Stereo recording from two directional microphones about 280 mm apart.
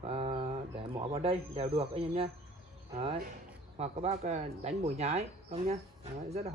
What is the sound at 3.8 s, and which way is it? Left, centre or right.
Speech, right.